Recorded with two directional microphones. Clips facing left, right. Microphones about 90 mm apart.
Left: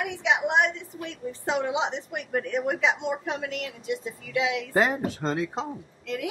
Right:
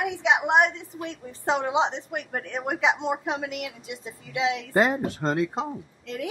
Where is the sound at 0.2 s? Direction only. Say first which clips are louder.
Right 2 dB; 35° right (ahead or behind).